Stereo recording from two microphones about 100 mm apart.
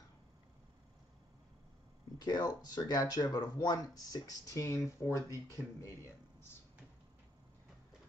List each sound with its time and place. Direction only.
2.2 s speech: 40° left (ahead or behind)